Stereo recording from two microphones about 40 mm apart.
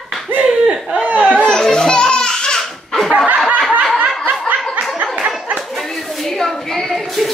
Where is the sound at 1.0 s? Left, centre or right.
Right.